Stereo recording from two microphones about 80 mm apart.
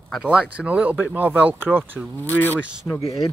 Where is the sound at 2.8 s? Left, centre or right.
Left.